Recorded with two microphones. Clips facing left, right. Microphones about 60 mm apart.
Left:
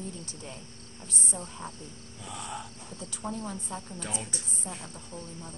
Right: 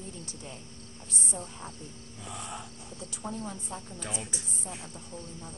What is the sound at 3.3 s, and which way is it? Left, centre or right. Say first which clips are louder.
Speech: left 2 dB; left.